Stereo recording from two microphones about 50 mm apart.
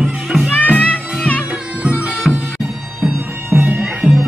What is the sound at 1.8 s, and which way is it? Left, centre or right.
Music, right.